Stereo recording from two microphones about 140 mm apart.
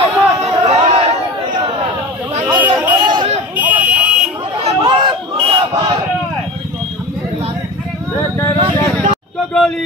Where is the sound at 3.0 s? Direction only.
35° right (ahead or behind).